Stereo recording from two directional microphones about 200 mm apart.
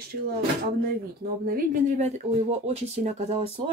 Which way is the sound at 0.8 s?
45° right (ahead or behind).